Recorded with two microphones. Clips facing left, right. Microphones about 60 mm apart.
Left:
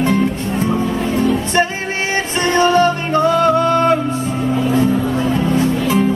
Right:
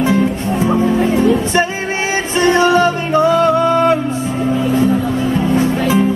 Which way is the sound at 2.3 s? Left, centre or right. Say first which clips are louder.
Right 2 dB; centre.